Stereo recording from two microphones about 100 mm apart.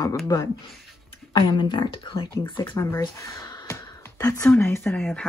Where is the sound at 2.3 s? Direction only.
35° left (ahead or behind).